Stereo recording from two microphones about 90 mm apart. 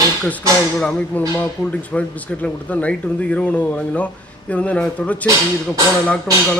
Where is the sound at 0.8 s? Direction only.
10° left (ahead or behind).